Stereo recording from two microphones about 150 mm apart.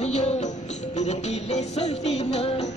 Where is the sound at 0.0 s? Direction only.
50° left (ahead or behind).